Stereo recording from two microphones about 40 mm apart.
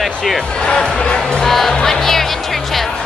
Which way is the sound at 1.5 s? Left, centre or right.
Centre.